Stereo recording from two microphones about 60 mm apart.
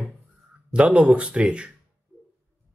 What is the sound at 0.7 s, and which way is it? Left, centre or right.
Speech, centre.